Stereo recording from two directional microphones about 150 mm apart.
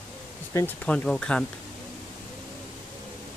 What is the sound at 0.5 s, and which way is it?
Speech, 20° left (ahead or behind).